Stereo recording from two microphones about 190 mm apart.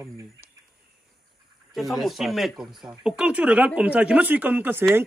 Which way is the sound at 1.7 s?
Centre (ahead or behind).